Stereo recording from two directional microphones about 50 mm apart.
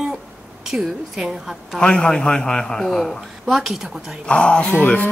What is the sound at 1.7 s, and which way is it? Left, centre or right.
A man's voice, centre.